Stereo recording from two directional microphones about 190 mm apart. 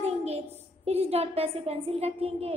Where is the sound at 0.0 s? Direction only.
35° right (ahead or behind).